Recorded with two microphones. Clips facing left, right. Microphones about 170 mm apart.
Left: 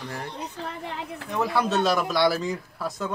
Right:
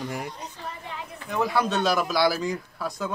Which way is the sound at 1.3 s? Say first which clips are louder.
Even; centre (ahead or behind).